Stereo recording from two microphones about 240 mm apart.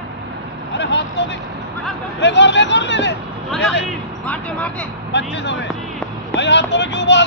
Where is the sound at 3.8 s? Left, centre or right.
Centre.